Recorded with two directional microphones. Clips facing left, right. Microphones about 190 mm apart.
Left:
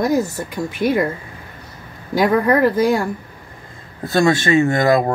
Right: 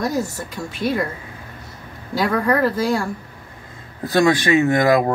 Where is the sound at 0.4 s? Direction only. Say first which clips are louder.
Left 4 dB; 15° left (ahead or behind).